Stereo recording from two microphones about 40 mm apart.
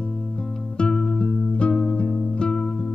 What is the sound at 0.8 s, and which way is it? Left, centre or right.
Music, left.